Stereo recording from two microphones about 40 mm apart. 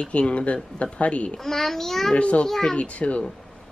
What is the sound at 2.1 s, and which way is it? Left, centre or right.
Speech, left.